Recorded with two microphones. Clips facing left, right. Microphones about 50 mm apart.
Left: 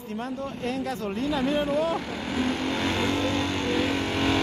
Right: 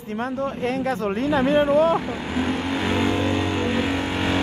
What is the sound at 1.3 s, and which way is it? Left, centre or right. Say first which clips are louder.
Speech: right 7 dB; right.